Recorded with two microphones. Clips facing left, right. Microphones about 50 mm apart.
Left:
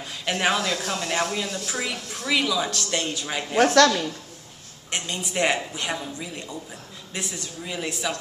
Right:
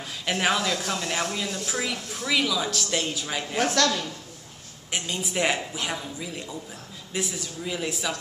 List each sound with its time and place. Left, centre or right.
0.2 s a woman's voice: centre
3.5 s a woman's voice: left
4.9 s a woman's voice: centre